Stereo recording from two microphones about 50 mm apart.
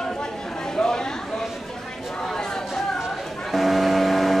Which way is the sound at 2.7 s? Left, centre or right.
Centre.